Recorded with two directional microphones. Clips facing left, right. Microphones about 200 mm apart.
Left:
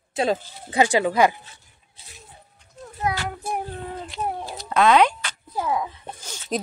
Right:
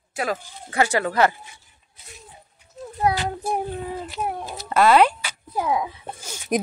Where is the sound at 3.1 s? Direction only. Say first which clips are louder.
Right 3 dB; 25° right (ahead or behind).